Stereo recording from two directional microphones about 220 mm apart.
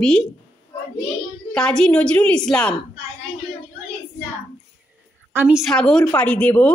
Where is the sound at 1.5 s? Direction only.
5° left (ahead or behind).